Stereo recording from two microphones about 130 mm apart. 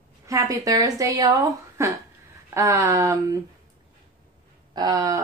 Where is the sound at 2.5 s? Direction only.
25° right (ahead or behind).